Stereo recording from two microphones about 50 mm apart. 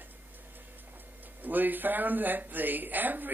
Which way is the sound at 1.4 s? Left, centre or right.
Right.